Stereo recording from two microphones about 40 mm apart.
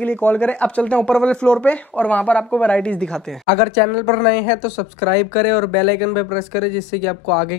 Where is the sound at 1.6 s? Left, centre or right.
Left.